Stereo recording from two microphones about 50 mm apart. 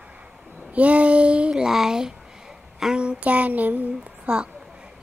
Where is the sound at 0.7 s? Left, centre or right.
Right.